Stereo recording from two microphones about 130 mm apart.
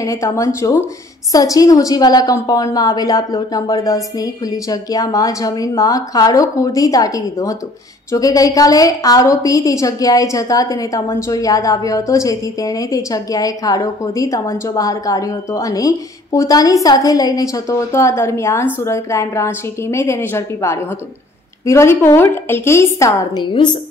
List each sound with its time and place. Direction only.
0.0 s a woman's voice: 25° left (ahead or behind)
23.4 s a woman's voice: 35° left (ahead or behind)